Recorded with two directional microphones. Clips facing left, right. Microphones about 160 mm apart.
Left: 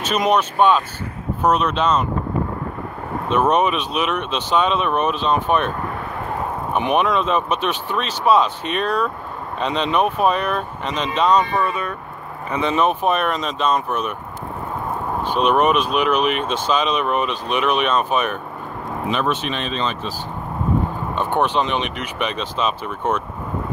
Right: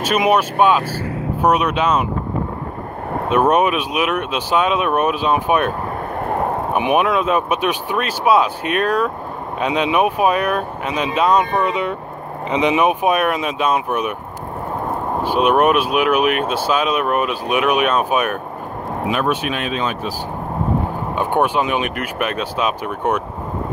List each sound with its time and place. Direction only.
0.0 s speech: 10° right (ahead or behind)
3.3 s speech: 10° right (ahead or behind)
6.7 s speech: 10° right (ahead or behind)
11.6 s speech: 20° right (ahead or behind)
15.2 s speech: 10° right (ahead or behind)
21.1 s speech: 10° right (ahead or behind)